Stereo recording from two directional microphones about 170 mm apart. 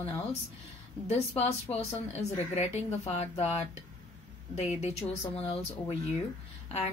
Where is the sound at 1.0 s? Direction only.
35° left (ahead or behind).